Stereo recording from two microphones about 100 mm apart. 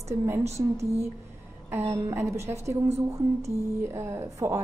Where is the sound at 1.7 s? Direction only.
30° right (ahead or behind).